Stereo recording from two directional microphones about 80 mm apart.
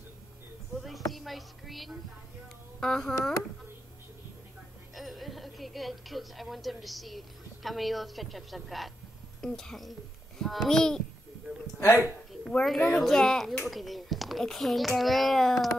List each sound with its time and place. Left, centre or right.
0.7 s a child's voice: centre
4.9 s a woman's voice: centre
11.6 s a man's voice: left
12.0 s a child's voice: centre